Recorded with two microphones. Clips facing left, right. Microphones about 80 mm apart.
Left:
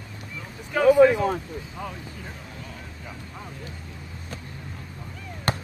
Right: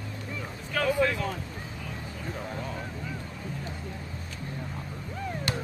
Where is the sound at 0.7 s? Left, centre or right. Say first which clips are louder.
Left 10 dB; left.